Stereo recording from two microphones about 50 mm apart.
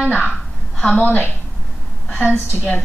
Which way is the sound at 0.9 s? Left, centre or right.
Left.